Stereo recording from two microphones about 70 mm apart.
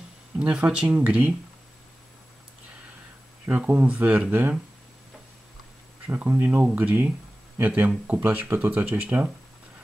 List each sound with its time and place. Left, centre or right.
0.4 s speech: centre
3.6 s speech: right
6.0 s speech: right
6.4 s speech: centre